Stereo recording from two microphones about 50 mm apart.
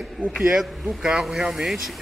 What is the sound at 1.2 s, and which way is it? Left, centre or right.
Speech, centre.